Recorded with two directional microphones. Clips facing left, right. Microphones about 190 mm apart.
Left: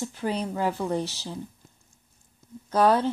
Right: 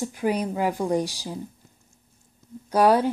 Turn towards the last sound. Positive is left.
turn(degrees=-10)  # may be behind; listen again after turning